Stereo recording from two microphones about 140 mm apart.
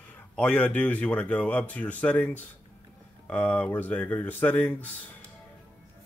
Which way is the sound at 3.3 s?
10° left (ahead or behind).